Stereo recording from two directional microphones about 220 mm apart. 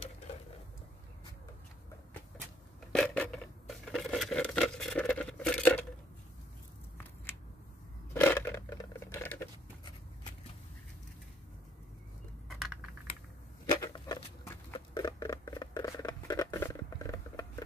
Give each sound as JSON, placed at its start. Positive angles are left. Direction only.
{"t": 2.9, "sound": "scissors", "side_deg": 5}
{"t": 8.1, "sound": "a sound", "side_deg": 10}
{"t": 13.7, "sound": "patter", "side_deg": 20}